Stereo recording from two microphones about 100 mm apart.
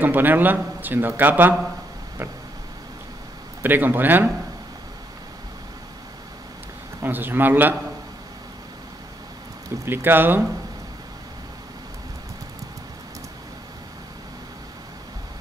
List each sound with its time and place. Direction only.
0.0 s speech: 20° right (ahead or behind)
3.6 s speech: 20° right (ahead or behind)
7.0 s speech: 20° right (ahead or behind)
9.8 s speech: 20° right (ahead or behind)